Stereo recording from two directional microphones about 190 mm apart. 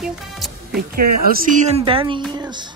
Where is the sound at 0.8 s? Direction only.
50° right (ahead or behind); by 2.2 s 25° right (ahead or behind).